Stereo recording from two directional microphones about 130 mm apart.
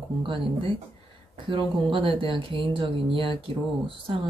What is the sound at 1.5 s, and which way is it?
Speech, 40° right (ahead or behind).